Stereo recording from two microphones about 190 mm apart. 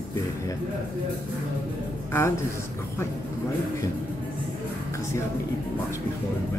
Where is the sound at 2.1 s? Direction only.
15° left (ahead or behind).